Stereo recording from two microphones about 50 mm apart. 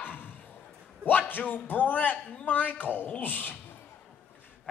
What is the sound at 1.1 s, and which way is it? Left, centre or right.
A man's voice, left.